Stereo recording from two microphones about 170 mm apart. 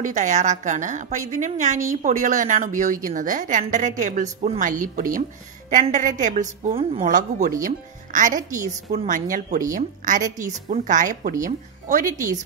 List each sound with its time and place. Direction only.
0.0 s a woman's voice: 45° right (ahead or behind)
6.7 s a woman's voice: 35° right (ahead or behind)
7.1 s a woman's voice: 45° right (ahead or behind)